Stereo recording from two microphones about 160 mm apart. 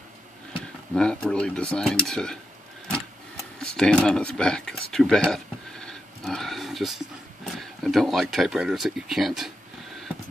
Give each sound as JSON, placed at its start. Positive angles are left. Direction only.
{"t": 0.9, "sound": "speech", "side_deg": 5}
{"t": 3.5, "sound": "speech", "side_deg": 5}
{"t": 4.9, "sound": "a sound", "side_deg": 5}
{"t": 7.8, "sound": "speech", "side_deg": 0}